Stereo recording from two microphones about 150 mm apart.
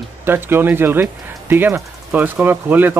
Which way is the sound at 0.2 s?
15° right (ahead or behind).